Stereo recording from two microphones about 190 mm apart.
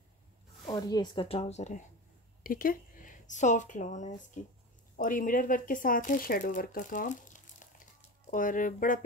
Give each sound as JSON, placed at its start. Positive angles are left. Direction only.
{"t": 0.7, "sound": "speech", "side_deg": 20}
{"t": 2.4, "sound": "speech", "side_deg": 50}